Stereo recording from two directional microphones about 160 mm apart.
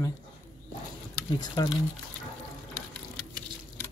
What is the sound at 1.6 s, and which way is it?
Speech, 25° left (ahead or behind).